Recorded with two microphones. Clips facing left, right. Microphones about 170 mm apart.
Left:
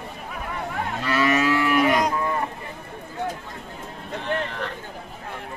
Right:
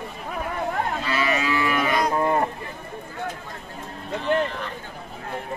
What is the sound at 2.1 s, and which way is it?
Run, 50° right (ahead or behind).